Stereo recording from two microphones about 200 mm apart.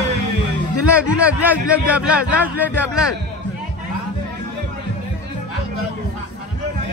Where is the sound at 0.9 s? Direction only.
5° right (ahead or behind).